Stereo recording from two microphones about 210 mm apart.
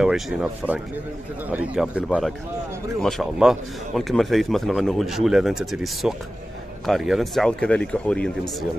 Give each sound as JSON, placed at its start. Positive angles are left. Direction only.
{"t": 0.0, "sound": "a man's voice", "side_deg": -5}